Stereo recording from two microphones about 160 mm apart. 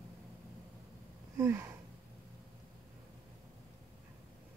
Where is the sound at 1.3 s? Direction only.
15° right (ahead or behind).